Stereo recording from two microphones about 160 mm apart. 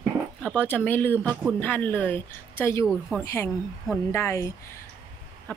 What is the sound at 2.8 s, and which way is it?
Speech, 5° right (ahead or behind).